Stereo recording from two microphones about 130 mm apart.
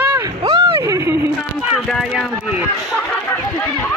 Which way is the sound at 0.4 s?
40° right (ahead or behind).